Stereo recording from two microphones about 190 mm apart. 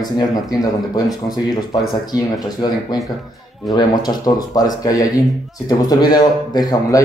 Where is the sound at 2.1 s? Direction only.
20° left (ahead or behind).